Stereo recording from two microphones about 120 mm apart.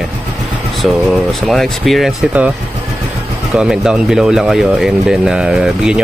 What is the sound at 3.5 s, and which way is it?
Speech, 5° right (ahead or behind).